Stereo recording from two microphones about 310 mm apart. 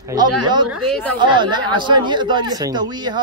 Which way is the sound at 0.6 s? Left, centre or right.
Right.